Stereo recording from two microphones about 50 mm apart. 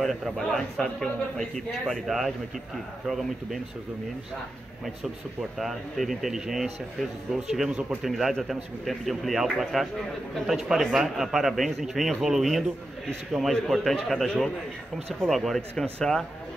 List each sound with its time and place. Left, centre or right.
0.0 s a man's voice: centre
1.9 s speech: centre
5.6 s a man's voice: centre
15.7 s a man's voice: centre